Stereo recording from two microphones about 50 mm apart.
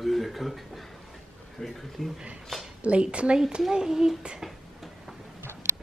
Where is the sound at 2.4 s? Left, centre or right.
Centre.